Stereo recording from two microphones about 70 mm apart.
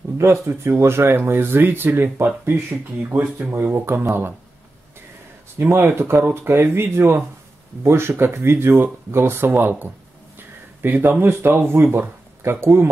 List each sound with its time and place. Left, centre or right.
0.2 s speech: right
5.6 s speech: right